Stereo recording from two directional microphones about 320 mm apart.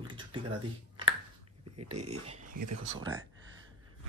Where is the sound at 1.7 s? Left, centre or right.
Right.